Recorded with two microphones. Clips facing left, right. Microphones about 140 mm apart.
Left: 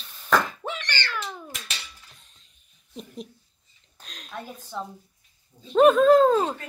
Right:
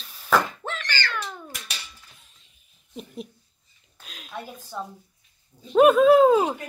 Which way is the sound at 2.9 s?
5° right (ahead or behind).